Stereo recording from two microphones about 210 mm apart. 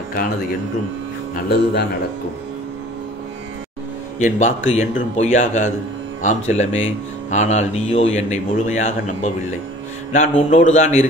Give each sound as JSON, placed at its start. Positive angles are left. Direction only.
{"t": 1.3, "sound": "speech", "side_deg": 50}
{"t": 4.2, "sound": "a man's voice", "side_deg": 35}